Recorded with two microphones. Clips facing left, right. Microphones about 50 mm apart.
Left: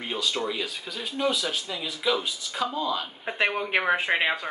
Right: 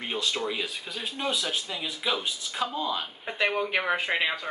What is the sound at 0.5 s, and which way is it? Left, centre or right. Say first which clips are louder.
Speech: left 1 dB; centre.